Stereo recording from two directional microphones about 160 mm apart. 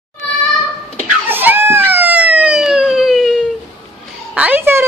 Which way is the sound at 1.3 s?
10° right (ahead or behind).